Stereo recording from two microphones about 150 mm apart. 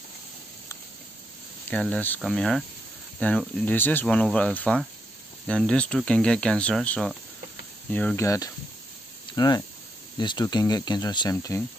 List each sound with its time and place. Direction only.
1.7 s speech: 10° left (ahead or behind)
8.3 s speech: 20° left (ahead or behind)